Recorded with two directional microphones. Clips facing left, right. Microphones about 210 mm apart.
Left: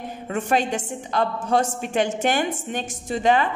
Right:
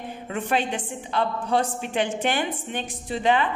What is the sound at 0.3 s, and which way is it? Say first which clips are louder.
A woman's voice: left 3 dB; 45° left (ahead or behind).